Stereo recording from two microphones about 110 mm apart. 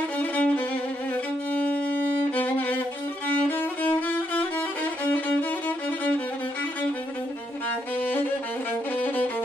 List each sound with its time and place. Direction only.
0.2 s violin: 10° left (ahead or behind)
3.4 s music: 15° left (ahead or behind)
8.0 s music: 15° left (ahead or behind)